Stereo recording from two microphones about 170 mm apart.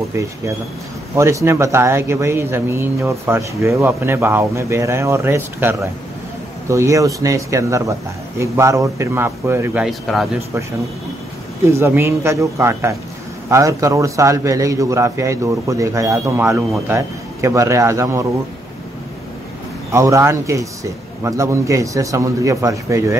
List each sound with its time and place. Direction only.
0.1 s a man's voice: 20° right (ahead or behind)
9.8 s speech: centre (ahead or behind)
11.6 s speech: 15° right (ahead or behind)
19.9 s a man's voice: 15° right (ahead or behind)